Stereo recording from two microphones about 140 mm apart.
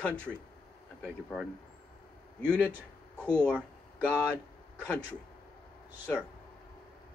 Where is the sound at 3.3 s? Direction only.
10° left (ahead or behind).